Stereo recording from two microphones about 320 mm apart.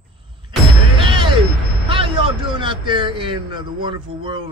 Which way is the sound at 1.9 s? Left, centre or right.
Centre.